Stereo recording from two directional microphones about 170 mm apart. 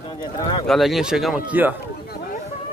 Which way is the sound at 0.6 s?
Centre (ahead or behind).